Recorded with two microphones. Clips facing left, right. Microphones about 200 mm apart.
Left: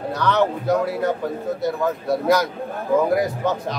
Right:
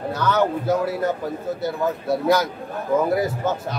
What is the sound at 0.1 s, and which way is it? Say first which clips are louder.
Speech: left 1 dB; 5° right (ahead or behind).